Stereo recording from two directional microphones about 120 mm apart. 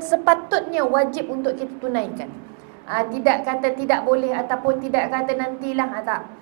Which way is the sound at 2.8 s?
20° right (ahead or behind).